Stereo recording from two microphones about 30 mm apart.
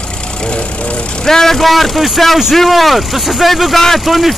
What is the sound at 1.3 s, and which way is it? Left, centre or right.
Speech, centre.